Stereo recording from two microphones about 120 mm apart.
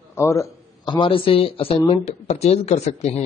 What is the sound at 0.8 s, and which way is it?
Speech, 40° left (ahead or behind).